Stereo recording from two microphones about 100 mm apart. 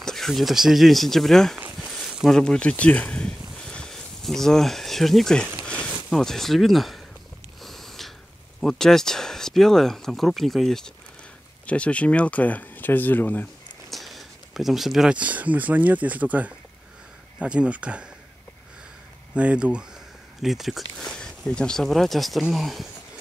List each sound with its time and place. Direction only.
0.0 s speech: 5° left (ahead or behind)
1.8 s a sound: centre (ahead or behind)
2.3 s speech: 10° left (ahead or behind)
7.6 s a sound: centre (ahead or behind)
8.5 s speech: 5° left (ahead or behind)
13.8 s speech: centre (ahead or behind)
19.3 s speech: 10° right (ahead or behind)